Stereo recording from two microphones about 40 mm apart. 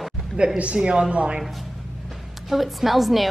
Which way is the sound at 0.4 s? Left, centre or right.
Right.